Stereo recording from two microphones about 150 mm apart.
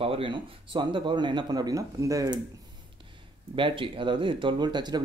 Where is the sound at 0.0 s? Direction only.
35° right (ahead or behind).